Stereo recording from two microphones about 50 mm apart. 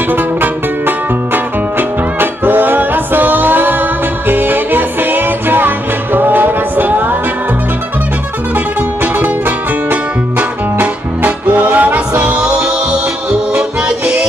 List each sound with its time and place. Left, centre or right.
0.1 s music: right
10.8 s music: right
12.4 s music: right